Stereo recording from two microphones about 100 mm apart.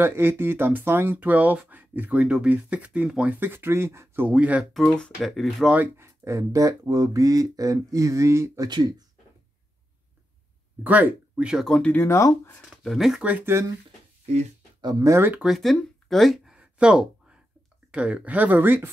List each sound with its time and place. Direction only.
0.0 s speech: 25° right (ahead or behind)
3.3 s speech: 20° right (ahead or behind)
4.7 s speech: 5° left (ahead or behind)
5.7 s speech: 20° right (ahead or behind)
8.6 s speech: 45° right (ahead or behind)
10.8 s speech: 15° right (ahead or behind)
11.5 s speech: centre (ahead or behind)
11.8 s speech: 20° left (ahead or behind)
12.6 s speech: centre (ahead or behind)
13.5 s speech: 25° right (ahead or behind)
14.8 s speech: 40° right (ahead or behind)
15.4 s speech: centre (ahead or behind)
16.5 s a sound: 10° right (ahead or behind)
17.9 s speech: 10° right (ahead or behind)